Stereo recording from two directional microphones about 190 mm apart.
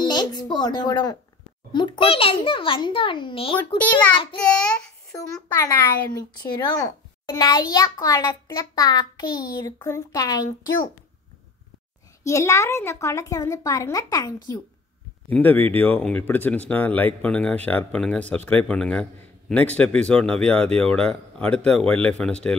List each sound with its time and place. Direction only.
0.0 s a sound: 20° left (ahead or behind)
1.7 s speech: 25° left (ahead or behind)
4.4 s speech: 5° left (ahead or behind)
12.2 s speech: 15° left (ahead or behind)
15.2 s speech: 10° left (ahead or behind)